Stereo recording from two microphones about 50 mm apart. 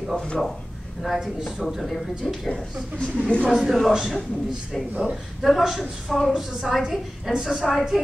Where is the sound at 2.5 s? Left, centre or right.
Left.